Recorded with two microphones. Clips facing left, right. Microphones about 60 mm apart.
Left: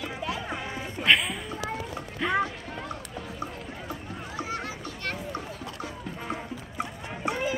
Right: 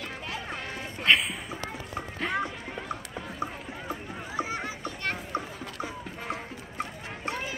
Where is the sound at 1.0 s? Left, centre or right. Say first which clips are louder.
Left 1 dB; centre.